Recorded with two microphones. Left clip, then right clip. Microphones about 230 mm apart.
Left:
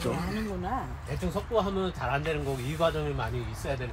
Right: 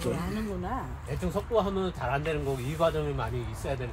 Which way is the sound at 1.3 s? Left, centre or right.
Right.